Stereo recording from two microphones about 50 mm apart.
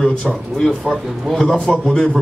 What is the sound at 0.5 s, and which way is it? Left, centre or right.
A man's voice, centre.